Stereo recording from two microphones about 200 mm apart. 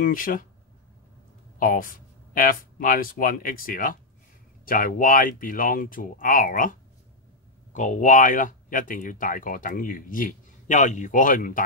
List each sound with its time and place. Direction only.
0.0 s speech: 45° left (ahead or behind)
1.6 s speech: 45° left (ahead or behind)